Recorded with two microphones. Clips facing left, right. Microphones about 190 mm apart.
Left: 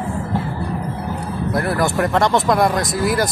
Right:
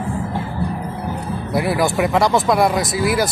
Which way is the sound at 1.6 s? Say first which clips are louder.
Right 2 dB; 5° right (ahead or behind).